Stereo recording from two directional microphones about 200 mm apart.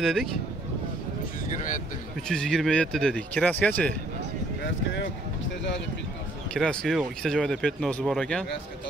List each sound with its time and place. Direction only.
0.0 s speech: centre (ahead or behind)
1.5 s speech: 40° left (ahead or behind)
2.2 s speech: 5° left (ahead or behind)
6.5 s speech: 5° left (ahead or behind)